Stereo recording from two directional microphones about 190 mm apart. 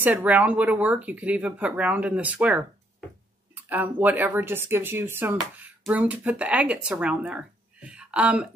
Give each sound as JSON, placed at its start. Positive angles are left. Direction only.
{"t": 0.0, "sound": "speech", "side_deg": -10}